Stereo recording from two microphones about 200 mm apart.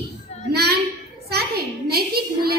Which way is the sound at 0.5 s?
50° right (ahead or behind).